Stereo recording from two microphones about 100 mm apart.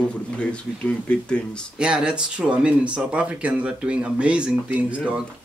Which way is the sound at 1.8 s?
10° right (ahead or behind).